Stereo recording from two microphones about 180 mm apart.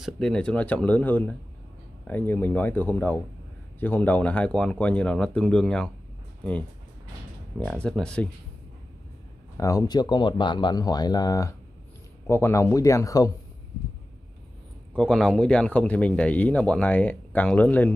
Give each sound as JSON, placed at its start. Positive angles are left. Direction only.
{"t": 0.0, "sound": "speech", "side_deg": 5}
{"t": 7.5, "sound": "speech", "side_deg": 5}
{"t": 9.6, "sound": "speech", "side_deg": 20}
{"t": 15.0, "sound": "speech", "side_deg": 5}